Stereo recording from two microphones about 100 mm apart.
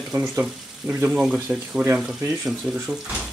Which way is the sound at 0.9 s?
15° right (ahead or behind).